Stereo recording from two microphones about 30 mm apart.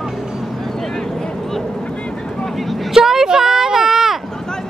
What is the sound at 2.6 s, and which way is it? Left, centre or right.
Vehicle, centre.